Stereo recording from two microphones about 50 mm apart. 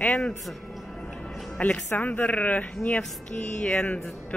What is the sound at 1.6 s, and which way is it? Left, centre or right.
A woman's voice, left.